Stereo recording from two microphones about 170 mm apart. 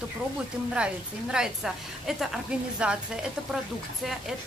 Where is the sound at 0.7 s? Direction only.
5° right (ahead or behind).